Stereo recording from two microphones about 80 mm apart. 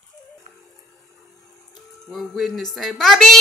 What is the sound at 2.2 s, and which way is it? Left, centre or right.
A woman's voice, centre.